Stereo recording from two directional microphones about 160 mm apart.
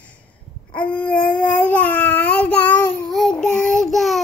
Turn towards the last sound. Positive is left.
turn(degrees=0)  # may be behind; listen again after turning